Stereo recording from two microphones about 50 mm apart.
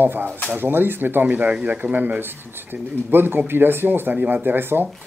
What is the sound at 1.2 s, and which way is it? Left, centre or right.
Speech, right.